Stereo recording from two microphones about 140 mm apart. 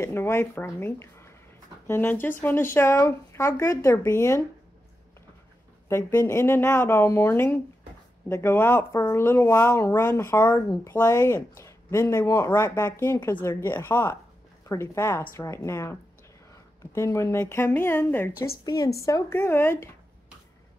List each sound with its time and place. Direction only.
0.0 s speech: 20° left (ahead or behind)
5.9 s speech: 15° left (ahead or behind)